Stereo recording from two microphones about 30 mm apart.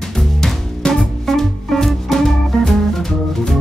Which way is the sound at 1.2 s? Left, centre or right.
Centre.